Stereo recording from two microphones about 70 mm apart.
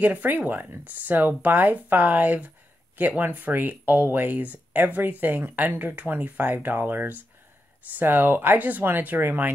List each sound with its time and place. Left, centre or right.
0.0 s speech: right